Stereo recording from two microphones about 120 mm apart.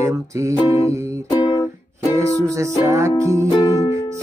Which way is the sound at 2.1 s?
25° right (ahead or behind).